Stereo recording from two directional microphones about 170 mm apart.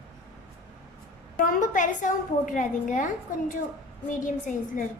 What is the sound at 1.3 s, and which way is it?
A woman's voice, 50° left (ahead or behind).